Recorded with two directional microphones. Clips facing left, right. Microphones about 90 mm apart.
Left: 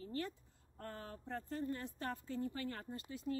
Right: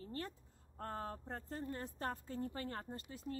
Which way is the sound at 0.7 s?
35° right (ahead or behind).